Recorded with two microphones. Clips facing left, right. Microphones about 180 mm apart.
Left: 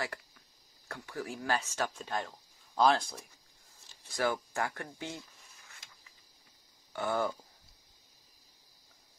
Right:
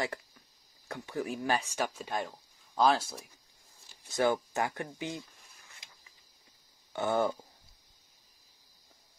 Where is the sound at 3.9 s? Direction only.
20° right (ahead or behind).